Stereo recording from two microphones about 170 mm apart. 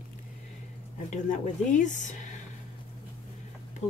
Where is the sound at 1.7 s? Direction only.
45° left (ahead or behind).